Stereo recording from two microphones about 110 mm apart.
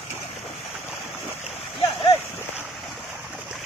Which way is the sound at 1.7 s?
50° left (ahead or behind).